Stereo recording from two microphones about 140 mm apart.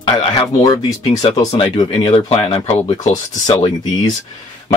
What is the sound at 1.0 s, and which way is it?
Speech, 50° left (ahead or behind).